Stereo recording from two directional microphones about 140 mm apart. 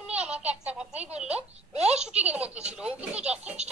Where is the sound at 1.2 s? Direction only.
50° right (ahead or behind).